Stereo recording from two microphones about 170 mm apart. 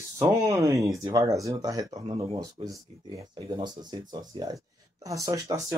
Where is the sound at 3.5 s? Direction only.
25° right (ahead or behind).